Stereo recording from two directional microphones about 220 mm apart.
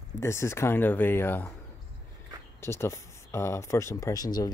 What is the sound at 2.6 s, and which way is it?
Speech, 10° left (ahead or behind).